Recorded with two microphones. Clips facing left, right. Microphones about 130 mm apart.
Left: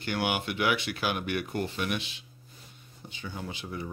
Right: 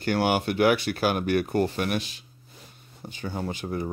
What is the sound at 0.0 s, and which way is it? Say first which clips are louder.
Speech: right 6 dB; 40° right (ahead or behind).